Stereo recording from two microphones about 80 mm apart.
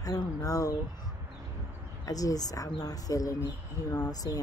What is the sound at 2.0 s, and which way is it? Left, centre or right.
A woman's voice, left.